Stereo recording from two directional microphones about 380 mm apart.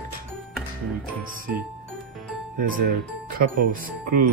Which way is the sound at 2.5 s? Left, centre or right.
Right.